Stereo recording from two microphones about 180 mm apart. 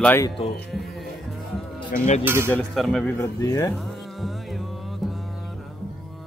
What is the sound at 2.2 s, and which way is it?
Speech, 15° right (ahead or behind).